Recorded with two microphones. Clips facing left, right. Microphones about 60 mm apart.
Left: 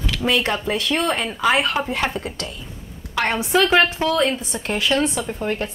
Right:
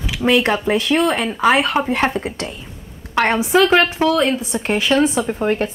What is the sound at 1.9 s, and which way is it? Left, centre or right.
Speech, right.